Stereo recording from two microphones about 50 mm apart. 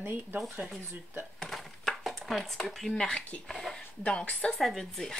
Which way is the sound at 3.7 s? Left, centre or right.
Centre.